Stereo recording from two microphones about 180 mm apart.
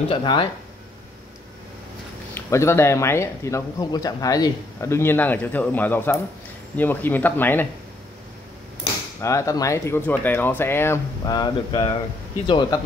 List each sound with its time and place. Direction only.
0.1 s speech: 25° left (ahead or behind)
2.3 s speech: 15° left (ahead or behind)
9.2 s speech: 15° left (ahead or behind)